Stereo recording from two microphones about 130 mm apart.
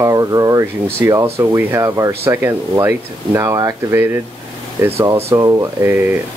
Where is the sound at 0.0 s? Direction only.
25° right (ahead or behind).